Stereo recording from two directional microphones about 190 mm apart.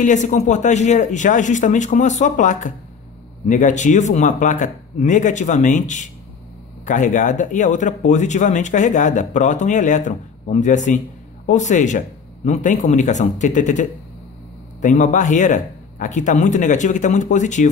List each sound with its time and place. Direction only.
0.0 s speech: 40° left (ahead or behind)